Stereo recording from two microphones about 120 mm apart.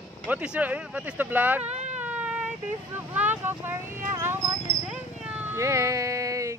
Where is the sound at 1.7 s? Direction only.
70° right (ahead or behind).